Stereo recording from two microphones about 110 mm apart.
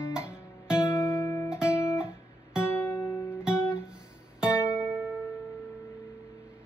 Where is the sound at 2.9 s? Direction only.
30° left (ahead or behind).